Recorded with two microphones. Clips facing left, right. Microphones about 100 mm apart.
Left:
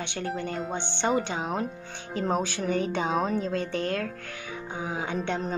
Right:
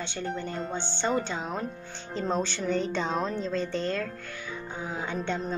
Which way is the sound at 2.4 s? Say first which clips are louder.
Left 1 dB; 50° left (ahead or behind).